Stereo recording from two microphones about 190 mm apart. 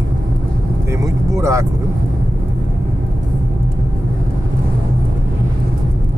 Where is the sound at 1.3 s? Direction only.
15° right (ahead or behind).